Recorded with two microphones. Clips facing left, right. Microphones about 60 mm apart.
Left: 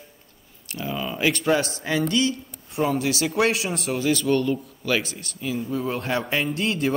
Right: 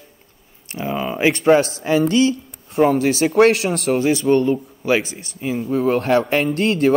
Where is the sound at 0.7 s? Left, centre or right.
Right.